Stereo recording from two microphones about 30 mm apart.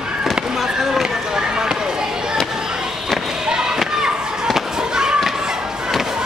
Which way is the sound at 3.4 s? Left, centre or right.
Right.